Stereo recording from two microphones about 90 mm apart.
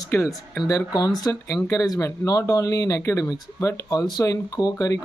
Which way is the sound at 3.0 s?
25° left (ahead or behind).